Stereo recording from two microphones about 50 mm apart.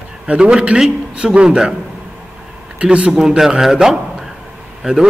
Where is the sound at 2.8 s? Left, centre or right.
Right.